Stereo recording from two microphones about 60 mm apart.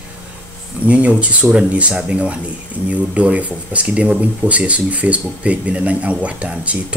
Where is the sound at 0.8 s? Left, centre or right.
Right.